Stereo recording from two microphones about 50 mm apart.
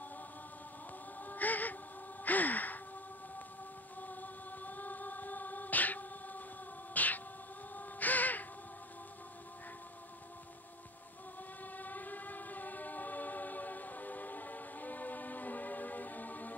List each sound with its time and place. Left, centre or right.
1.2 s music: left
2.2 s gasp: left
4.0 s music: left
7.7 s crow: left
11.7 s choir: left